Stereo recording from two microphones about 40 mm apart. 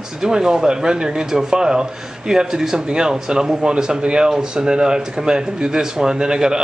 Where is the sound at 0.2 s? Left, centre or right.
Centre.